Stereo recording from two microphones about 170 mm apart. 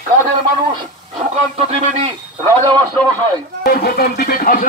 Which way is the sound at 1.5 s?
35° right (ahead or behind).